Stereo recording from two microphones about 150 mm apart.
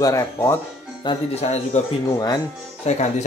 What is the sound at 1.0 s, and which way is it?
Speech, 45° left (ahead or behind).